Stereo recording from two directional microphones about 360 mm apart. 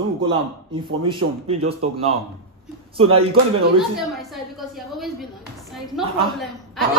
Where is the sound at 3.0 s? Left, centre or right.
Centre.